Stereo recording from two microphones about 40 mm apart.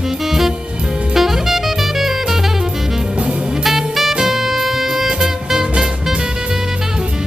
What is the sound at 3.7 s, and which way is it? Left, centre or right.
Music, centre.